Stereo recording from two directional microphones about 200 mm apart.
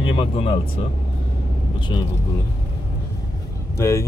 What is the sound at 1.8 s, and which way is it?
Speech, 25° left (ahead or behind).